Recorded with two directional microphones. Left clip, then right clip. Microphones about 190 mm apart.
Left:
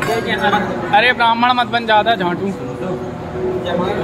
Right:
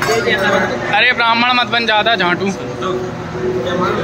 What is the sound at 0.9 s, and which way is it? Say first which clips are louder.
A man's voice: even; 10° left (ahead or behind).